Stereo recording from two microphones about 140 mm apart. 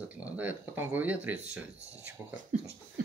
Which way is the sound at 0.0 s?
10° right (ahead or behind).